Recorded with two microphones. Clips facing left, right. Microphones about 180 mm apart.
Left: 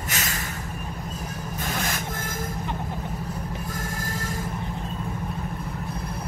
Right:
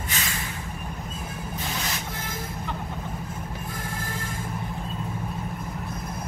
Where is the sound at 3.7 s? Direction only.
40° left (ahead or behind).